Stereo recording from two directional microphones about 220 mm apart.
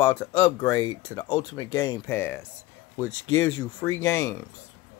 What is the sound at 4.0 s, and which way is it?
Speech, 15° left (ahead or behind).